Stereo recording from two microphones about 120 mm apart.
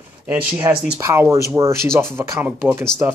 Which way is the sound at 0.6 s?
35° right (ahead or behind).